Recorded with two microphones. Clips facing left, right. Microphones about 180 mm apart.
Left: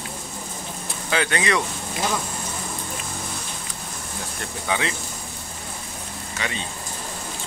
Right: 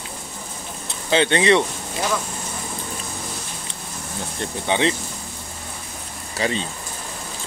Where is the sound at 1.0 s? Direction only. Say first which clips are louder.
Right 6 dB; 25° right (ahead or behind).